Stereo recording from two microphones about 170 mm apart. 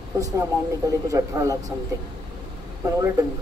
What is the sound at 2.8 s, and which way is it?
Speech, 20° right (ahead or behind).